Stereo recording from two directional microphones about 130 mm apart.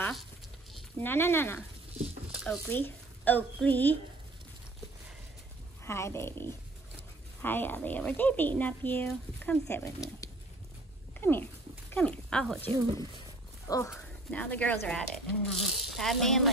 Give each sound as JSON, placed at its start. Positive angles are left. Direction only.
{"t": 0.9, "sound": "speech", "side_deg": 15}
{"t": 2.7, "sound": "a woman's voice", "side_deg": 15}
{"t": 5.9, "sound": "speech", "side_deg": 20}
{"t": 9.8, "sound": "speech", "side_deg": 25}
{"t": 13.7, "sound": "dog", "side_deg": 25}
{"t": 14.3, "sound": "speech", "side_deg": 10}